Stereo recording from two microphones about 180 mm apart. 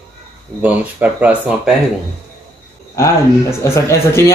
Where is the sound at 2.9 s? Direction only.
15° left (ahead or behind).